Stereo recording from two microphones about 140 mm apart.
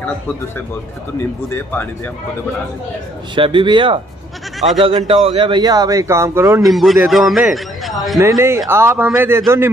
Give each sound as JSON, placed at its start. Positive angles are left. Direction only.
{"t": 1.5, "sound": "speech", "side_deg": 15}
{"t": 3.3, "sound": "speech", "side_deg": -35}
{"t": 4.6, "sound": "speech", "side_deg": 0}
{"t": 4.8, "sound": "speech", "side_deg": -40}
{"t": 6.6, "sound": "a man's voice", "side_deg": 0}
{"t": 8.2, "sound": "a man's voice", "side_deg": -20}